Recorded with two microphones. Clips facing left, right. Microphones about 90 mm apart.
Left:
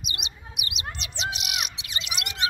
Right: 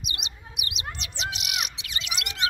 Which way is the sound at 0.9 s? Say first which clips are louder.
Left 2 dB; 20° left (ahead or behind).